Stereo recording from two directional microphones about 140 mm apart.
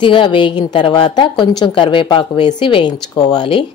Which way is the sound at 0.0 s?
35° left (ahead or behind).